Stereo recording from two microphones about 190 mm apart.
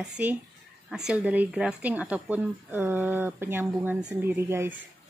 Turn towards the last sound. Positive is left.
turn(degrees=-15)  # may be behind; listen again after turning